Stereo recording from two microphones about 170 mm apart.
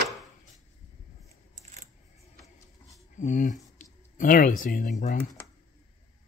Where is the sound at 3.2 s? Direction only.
50° left (ahead or behind).